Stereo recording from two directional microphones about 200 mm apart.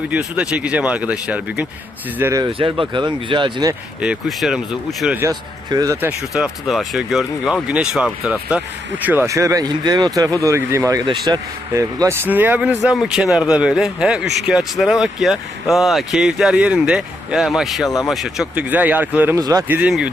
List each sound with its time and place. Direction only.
0.1 s speech: 5° right (ahead or behind); by 3.7 s 25° right (ahead or behind)
4.0 s speech: 5° right (ahead or behind)